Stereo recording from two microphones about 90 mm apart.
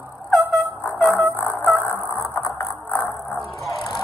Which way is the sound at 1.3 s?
25° left (ahead or behind).